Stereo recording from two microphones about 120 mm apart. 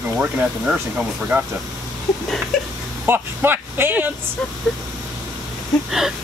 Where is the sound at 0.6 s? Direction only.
5° right (ahead or behind).